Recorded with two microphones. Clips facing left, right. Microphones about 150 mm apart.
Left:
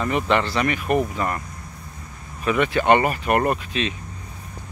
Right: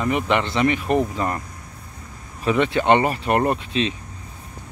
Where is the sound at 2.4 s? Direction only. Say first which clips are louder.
Right 1 dB; 25° right (ahead or behind).